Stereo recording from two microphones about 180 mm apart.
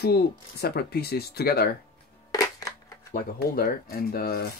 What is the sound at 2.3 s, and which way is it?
Crushing, 20° left (ahead or behind).